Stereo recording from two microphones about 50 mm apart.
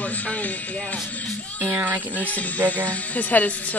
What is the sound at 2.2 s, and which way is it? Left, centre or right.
Speech, left.